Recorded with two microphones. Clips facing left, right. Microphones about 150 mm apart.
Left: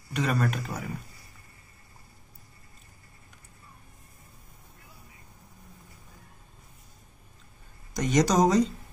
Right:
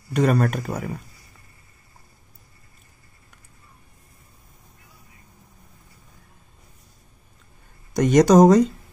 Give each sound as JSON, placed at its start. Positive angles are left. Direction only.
{"t": 0.1, "sound": "speech", "side_deg": -45}
{"t": 7.9, "sound": "speech", "side_deg": -55}